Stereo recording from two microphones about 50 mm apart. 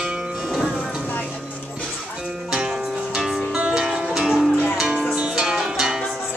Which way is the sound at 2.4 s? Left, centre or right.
Centre.